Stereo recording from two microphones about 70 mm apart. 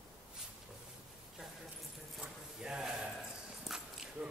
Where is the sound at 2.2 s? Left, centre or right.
Centre.